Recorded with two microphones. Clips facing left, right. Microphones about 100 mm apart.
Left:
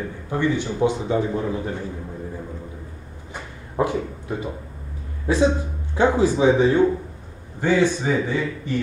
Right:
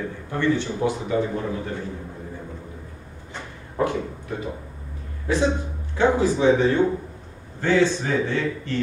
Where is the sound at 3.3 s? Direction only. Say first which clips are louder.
Left 4 dB; 15° left (ahead or behind).